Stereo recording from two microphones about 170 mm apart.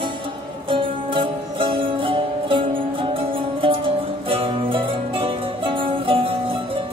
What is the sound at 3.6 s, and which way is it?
Music, 30° right (ahead or behind).